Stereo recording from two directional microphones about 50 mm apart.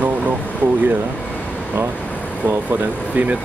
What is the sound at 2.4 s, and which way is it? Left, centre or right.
Speech, right.